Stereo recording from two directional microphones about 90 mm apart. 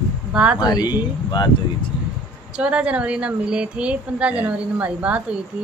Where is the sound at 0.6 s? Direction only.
50° left (ahead or behind).